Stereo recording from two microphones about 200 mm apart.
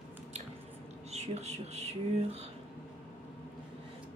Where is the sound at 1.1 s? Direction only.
35° right (ahead or behind).